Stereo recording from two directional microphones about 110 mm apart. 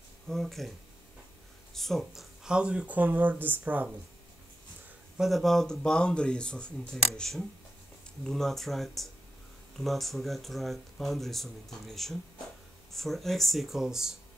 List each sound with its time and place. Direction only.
0.3 s speech: 5° left (ahead or behind)
1.7 s speech: 5° left (ahead or behind); by 3.9 s 15° right (ahead or behind)
5.1 s speech: centre (ahead or behind)